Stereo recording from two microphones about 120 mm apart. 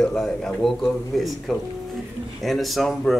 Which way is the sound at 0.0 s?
5° left (ahead or behind).